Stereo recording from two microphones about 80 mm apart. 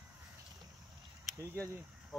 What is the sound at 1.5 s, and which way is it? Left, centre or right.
Speech, right.